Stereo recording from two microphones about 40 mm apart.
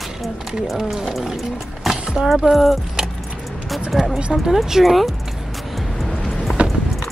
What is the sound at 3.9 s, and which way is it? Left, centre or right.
Speech, centre.